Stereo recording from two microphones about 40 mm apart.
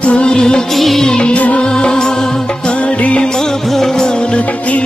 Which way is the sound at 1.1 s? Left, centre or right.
Left.